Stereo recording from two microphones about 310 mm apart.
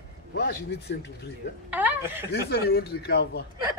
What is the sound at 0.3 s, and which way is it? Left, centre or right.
Speech, left.